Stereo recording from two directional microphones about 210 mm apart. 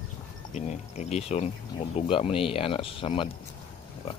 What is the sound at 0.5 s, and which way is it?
Speech, 35° left (ahead or behind).